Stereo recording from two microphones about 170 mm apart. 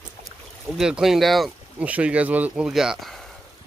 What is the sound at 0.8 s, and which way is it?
Speech, 5° right (ahead or behind).